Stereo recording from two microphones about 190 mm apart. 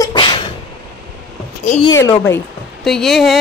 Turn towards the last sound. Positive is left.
turn(degrees=0)  # may be behind; listen again after turning